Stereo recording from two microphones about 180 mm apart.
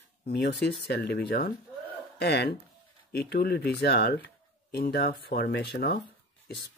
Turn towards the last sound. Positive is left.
turn(degrees=60)  # may be behind; listen again after turning